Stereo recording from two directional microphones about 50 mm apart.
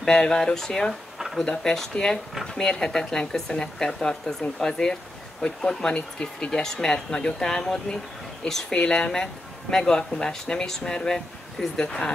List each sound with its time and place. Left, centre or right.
0.0 s speech: centre